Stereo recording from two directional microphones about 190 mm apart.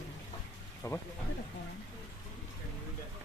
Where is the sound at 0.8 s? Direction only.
15° left (ahead or behind).